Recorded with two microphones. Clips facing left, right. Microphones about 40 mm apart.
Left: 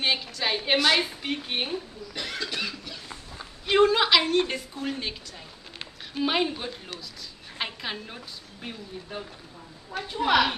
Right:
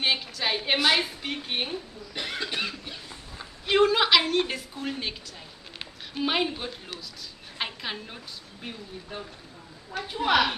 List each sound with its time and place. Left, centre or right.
0.0 s a sound: centre
0.7 s a woman's voice: centre
1.0 s a woman's voice: centre
2.1 s cough: right
2.7 s rodents: right
3.3 s a sound: centre
5.8 s speech: centre
7.5 s a sound: centre
8.6 s a woman's voice: centre